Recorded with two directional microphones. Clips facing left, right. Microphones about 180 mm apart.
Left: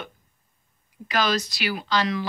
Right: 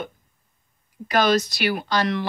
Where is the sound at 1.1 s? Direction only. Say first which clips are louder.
Right 5 dB; 55° right (ahead or behind).